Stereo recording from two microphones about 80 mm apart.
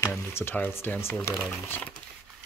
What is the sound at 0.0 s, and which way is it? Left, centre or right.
Speech, left.